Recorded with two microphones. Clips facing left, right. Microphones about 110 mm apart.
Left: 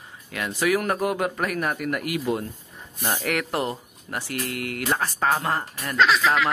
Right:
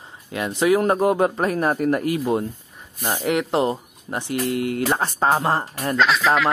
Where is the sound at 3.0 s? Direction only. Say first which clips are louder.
Right 4 dB; 20° right (ahead or behind).